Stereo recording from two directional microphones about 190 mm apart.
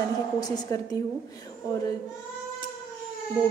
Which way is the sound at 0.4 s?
20° left (ahead or behind).